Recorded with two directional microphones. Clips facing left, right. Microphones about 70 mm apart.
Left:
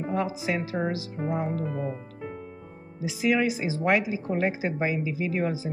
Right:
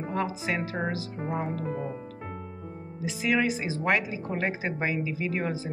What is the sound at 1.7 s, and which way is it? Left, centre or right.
Speech, right.